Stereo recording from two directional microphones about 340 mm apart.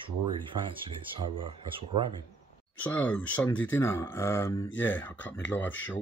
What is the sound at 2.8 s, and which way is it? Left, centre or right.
Speech, centre.